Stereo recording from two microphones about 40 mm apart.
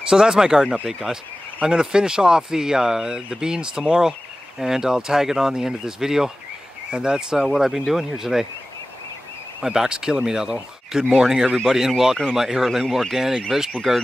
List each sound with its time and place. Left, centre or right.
0.1 s speech: centre
9.6 s speech: centre
13.7 s speech: centre